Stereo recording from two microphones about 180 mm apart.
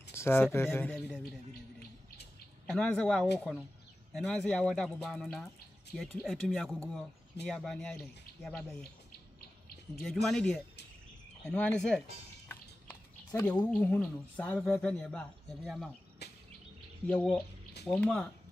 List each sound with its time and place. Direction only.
0.1 s speech: 15° left (ahead or behind)
2.6 s speech: 5° left (ahead or behind)
10.2 s speech: 5° left (ahead or behind)
12.4 s a sound: 10° left (ahead or behind)
13.7 s speech: 5° left (ahead or behind)
16.2 s a sound: 65° left (ahead or behind)
17.1 s speech: 5° left (ahead or behind)